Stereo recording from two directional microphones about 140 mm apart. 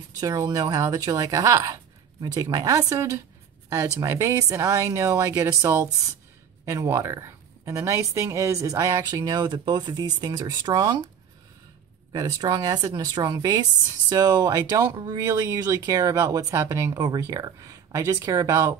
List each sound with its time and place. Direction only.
0.2 s a woman's voice: 25° right (ahead or behind)
12.1 s a woman's voice: 25° right (ahead or behind)